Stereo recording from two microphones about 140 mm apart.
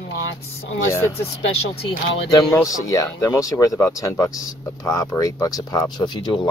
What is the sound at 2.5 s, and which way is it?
Speech, 25° left (ahead or behind).